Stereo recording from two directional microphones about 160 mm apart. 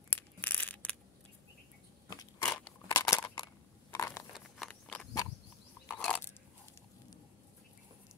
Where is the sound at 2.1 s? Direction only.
20° left (ahead or behind).